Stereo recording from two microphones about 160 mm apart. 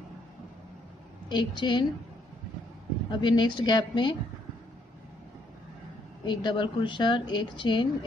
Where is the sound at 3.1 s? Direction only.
30° left (ahead or behind).